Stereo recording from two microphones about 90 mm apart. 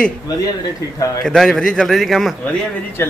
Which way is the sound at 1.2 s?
5° left (ahead or behind).